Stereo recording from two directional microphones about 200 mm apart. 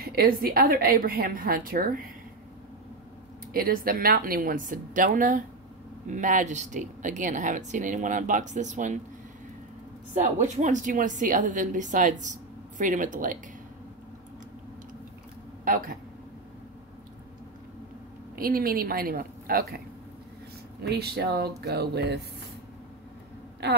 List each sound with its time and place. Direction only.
0.0 s a woman's voice: 50° right (ahead or behind)
3.5 s a woman's voice: 45° right (ahead or behind)
10.1 s a woman's voice: 35° right (ahead or behind)
15.7 s speech: 45° right (ahead or behind)
18.4 s a woman's voice: 45° right (ahead or behind)
20.8 s speech: 55° right (ahead or behind)